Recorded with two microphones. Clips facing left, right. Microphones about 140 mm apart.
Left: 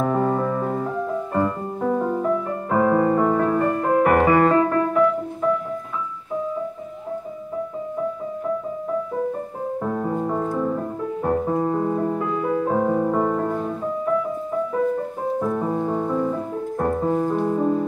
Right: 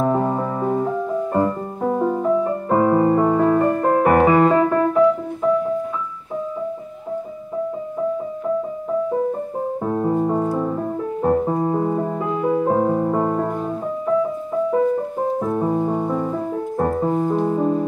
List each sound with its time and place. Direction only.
0.0 s music: 20° right (ahead or behind)
9.8 s music: 20° right (ahead or behind)
15.3 s music: 20° right (ahead or behind)
17.2 s music: 10° right (ahead or behind)